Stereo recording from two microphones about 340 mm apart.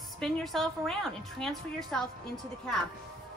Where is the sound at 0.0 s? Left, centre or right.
Centre.